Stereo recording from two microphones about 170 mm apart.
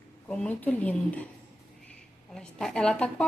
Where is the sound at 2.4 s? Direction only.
5° left (ahead or behind).